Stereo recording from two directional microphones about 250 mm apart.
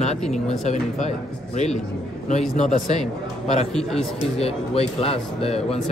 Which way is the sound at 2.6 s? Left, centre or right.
Left.